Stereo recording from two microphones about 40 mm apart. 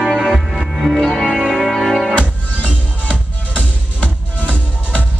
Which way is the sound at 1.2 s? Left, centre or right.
Centre.